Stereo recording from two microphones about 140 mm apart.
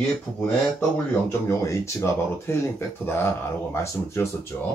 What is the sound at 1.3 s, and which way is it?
Speech, 20° left (ahead or behind).